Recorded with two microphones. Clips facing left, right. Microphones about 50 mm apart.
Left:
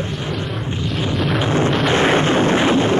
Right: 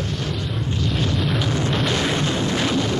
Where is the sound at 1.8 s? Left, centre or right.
Left.